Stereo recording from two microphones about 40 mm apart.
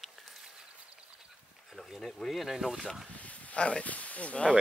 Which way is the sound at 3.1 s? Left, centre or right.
Left.